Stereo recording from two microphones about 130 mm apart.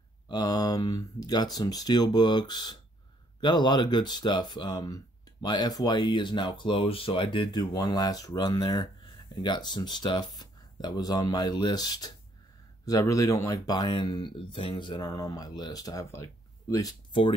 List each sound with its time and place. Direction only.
0.3 s speech: 30° left (ahead or behind)
17.1 s speech: 40° left (ahead or behind)